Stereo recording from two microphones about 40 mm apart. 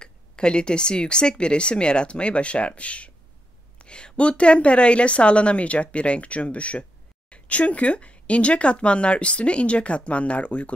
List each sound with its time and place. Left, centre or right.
0.0 s a woman's voice: left